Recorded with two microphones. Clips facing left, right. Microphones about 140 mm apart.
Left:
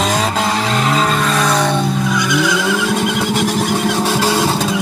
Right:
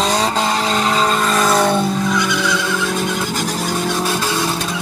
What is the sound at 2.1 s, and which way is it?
Skidding, 15° left (ahead or behind).